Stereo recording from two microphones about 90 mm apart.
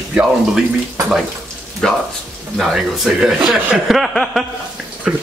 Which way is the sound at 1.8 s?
5° left (ahead or behind).